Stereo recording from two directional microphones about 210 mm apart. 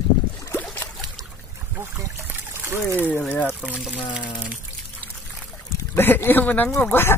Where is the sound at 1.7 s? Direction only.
10° right (ahead or behind).